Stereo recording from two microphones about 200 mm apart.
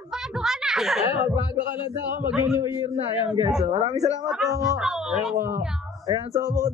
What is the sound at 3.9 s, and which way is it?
Speech, 15° left (ahead or behind).